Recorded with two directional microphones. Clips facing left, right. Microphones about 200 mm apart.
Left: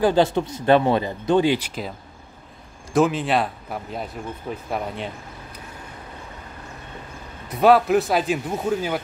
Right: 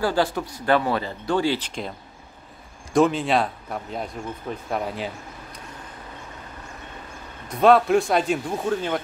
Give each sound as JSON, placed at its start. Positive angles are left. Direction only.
{"t": 0.0, "sound": "speech", "side_deg": 20}
{"t": 2.9, "sound": "speech", "side_deg": 0}
{"t": 7.4, "sound": "speech", "side_deg": 5}